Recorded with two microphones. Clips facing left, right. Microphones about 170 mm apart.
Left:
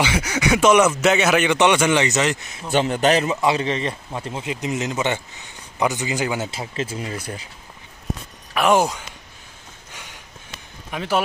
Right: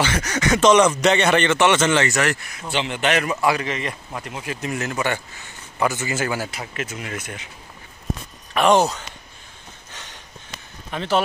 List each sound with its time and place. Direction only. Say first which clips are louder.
0.0 s speech: left 1 dB; 10° left (ahead or behind)
1.5 s speech: left 1 dB; 15° left (ahead or behind)
2.7 s speech: left 4 dB; 40° left (ahead or behind)
3.3 s speech: left 1 dB; 25° left (ahead or behind)
8.5 s speech: right 1 dB; 10° left (ahead or behind)
10.9 s speech: right 1 dB; 10° left (ahead or behind)